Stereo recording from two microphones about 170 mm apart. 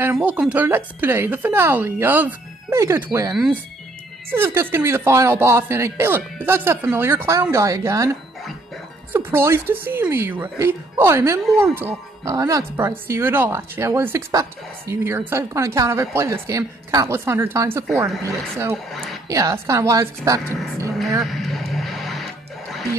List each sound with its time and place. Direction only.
0.0 s speech: 10° right (ahead or behind)
9.1 s speech: 15° right (ahead or behind)
18.9 s speech: centre (ahead or behind)
19.2 s speech: 20° right (ahead or behind)
21.2 s music: centre (ahead or behind)